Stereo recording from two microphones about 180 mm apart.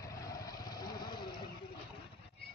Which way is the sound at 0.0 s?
20° left (ahead or behind).